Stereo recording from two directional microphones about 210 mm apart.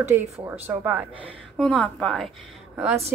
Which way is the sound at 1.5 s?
Centre (ahead or behind).